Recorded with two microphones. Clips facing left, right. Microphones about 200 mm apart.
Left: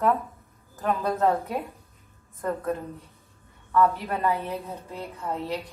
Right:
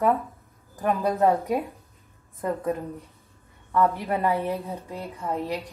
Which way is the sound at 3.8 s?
15° right (ahead or behind).